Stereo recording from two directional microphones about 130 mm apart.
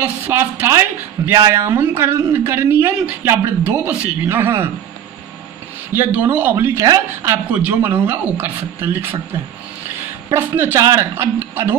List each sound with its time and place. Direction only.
0.0 s speech: 15° right (ahead or behind)
5.9 s speech: 15° right (ahead or behind)
10.3 s speech: 20° right (ahead or behind)